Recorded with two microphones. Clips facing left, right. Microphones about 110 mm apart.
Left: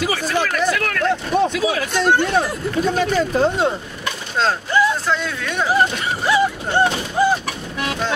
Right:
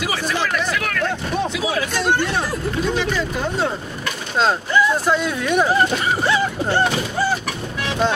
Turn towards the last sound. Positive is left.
turn(degrees=15)  # may be behind; listen again after turning